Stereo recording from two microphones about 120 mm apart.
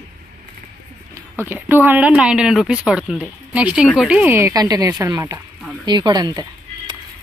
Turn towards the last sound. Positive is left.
turn(degrees=-35)  # may be behind; listen again after turning